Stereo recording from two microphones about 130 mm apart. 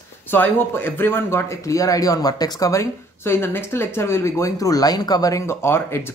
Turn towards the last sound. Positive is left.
turn(degrees=20)  # may be behind; listen again after turning